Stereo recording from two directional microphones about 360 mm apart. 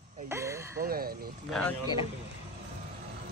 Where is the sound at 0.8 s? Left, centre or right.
Right.